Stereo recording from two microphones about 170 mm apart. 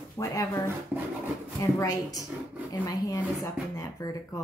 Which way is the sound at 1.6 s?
20° left (ahead or behind).